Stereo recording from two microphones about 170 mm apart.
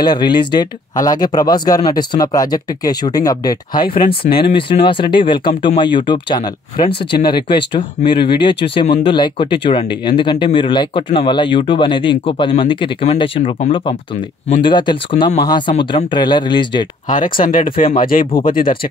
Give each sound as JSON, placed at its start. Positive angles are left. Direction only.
{"t": 0.0, "sound": "speech", "side_deg": 25}
{"t": 4.0, "sound": "speech", "side_deg": 60}
{"t": 4.5, "sound": "speech", "side_deg": 30}
{"t": 17.1, "sound": "speech", "side_deg": 50}